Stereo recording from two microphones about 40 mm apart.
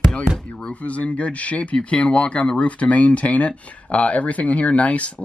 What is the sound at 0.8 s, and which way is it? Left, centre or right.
Speech, left.